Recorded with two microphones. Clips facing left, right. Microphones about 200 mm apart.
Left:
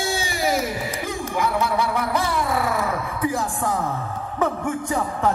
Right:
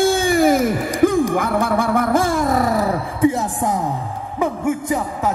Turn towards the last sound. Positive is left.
turn(degrees=-10)  # may be behind; listen again after turning